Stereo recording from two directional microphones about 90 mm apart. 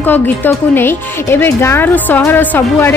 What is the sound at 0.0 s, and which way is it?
Speech, 20° left (ahead or behind).